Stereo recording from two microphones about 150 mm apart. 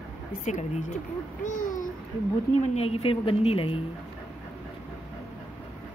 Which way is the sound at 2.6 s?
45° left (ahead or behind).